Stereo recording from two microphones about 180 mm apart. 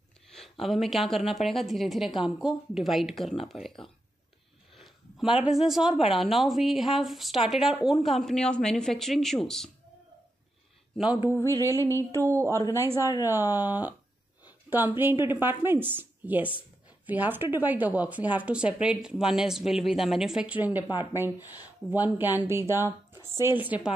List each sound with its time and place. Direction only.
0.3 s a woman's voice: centre (ahead or behind)
11.2 s speech: 15° right (ahead or behind)